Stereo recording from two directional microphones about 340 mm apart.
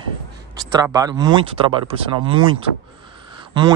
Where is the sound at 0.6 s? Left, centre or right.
Centre.